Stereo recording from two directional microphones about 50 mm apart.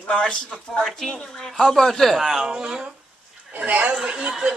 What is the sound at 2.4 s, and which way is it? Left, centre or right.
Speech, centre.